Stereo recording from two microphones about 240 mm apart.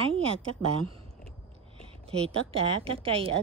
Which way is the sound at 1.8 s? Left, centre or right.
Right.